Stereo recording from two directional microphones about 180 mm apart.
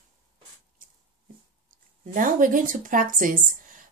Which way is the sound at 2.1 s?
50° right (ahead or behind).